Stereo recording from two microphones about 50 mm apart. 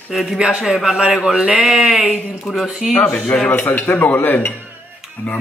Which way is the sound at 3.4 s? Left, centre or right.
Left.